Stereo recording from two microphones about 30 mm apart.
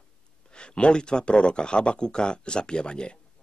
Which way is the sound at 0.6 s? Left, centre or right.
Left.